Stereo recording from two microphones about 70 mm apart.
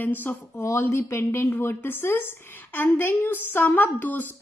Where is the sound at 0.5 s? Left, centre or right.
Left.